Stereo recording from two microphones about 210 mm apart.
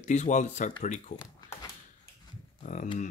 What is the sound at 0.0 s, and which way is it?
Speech, 35° left (ahead or behind).